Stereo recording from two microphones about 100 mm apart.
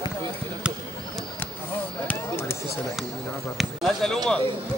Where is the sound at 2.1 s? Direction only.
25° left (ahead or behind).